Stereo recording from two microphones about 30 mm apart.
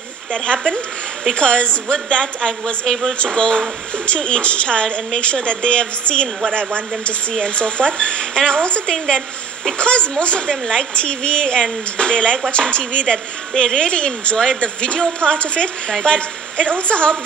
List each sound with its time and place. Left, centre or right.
0.3 s a woman's voice: left
7.3 s a woman's voice: left
8.8 s a woman's voice: left
9.8 s a woman's voice: left
15.9 s a woman's voice: left
16.2 s a woman's voice: left